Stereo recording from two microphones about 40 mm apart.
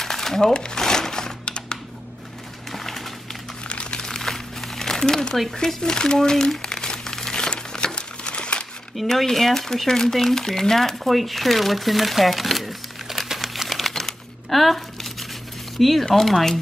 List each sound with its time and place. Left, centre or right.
0.0 s a sound: centre
0.5 s crumpling: left
2.7 s a sound: centre
3.6 s crumpling: left
4.0 s crumpling: centre
5.5 s speech: centre
6.6 s crumpling: centre
8.9 s speech: centre